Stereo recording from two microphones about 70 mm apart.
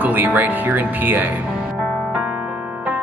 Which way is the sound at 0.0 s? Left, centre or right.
Right.